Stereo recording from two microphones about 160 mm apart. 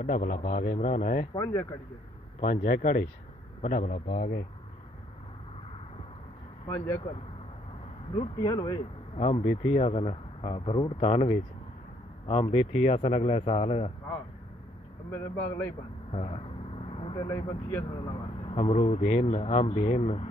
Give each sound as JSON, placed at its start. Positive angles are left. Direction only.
{"t": 0.0, "sound": "a man's voice", "side_deg": 50}
{"t": 1.3, "sound": "speech", "side_deg": 25}
{"t": 2.4, "sound": "a man's voice", "side_deg": 60}
{"t": 8.1, "sound": "speech", "side_deg": 30}
{"t": 15.0, "sound": "speech", "side_deg": 15}
{"t": 16.1, "sound": "vehicle", "side_deg": 35}
{"t": 17.3, "sound": "speech", "side_deg": 20}
{"t": 18.0, "sound": "speech", "side_deg": 35}